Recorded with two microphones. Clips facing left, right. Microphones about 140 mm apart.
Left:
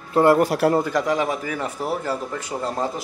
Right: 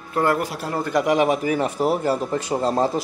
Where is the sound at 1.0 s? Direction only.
20° right (ahead or behind).